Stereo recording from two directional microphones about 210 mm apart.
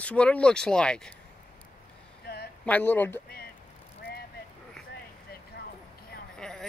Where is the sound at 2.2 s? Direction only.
50° left (ahead or behind).